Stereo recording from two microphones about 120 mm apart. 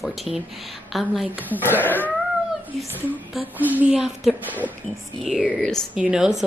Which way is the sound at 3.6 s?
15° right (ahead or behind).